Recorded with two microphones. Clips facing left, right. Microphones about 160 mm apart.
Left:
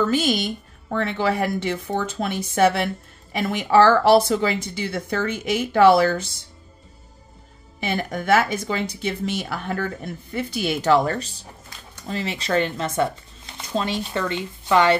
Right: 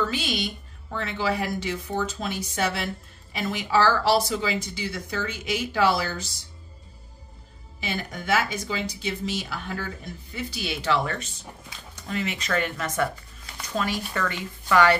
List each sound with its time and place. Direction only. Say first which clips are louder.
0.0 s speech: left 7 dB; 45° left (ahead or behind)
7.8 s speech: left 6 dB; 55° left (ahead or behind); by 15.0 s 20° left (ahead or behind)